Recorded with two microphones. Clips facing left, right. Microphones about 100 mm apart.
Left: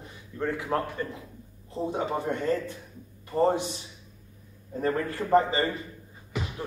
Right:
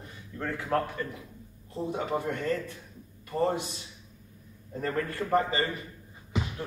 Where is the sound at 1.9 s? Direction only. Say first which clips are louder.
Left 2 dB; 25° left (ahead or behind).